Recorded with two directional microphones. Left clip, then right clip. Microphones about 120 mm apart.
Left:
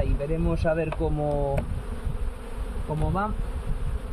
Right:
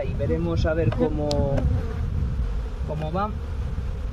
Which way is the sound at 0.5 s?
20° right (ahead or behind).